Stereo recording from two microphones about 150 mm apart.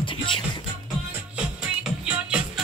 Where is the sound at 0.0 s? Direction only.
35° left (ahead or behind).